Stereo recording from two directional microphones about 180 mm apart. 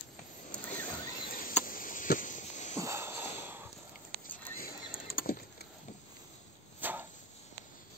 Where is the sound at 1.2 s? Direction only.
50° left (ahead or behind).